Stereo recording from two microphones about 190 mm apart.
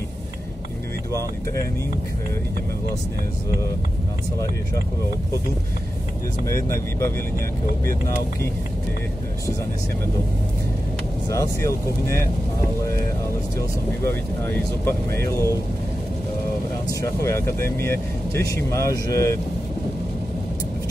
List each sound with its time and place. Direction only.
6.4 s speech: 15° left (ahead or behind)
11.2 s speech: 15° left (ahead or behind)
13.6 s speech: 10° left (ahead or behind)
17.0 s speech: 15° left (ahead or behind)